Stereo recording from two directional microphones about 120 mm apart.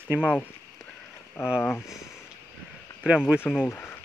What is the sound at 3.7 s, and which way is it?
Speech, 20° left (ahead or behind).